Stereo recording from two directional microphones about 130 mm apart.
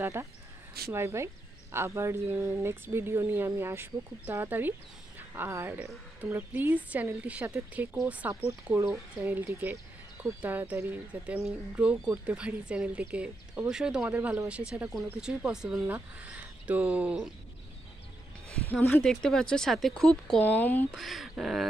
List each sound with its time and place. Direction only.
0.0 s speech: 20° right (ahead or behind)
18.9 s speech: 5° left (ahead or behind)
20.9 s speech: centre (ahead or behind)